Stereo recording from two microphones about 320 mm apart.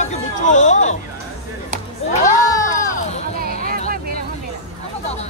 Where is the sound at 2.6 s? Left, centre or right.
Centre.